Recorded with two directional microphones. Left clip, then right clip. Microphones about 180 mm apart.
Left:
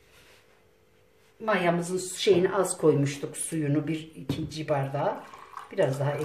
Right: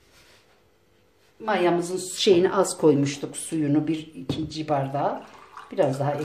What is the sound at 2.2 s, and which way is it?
Speech, 35° right (ahead or behind).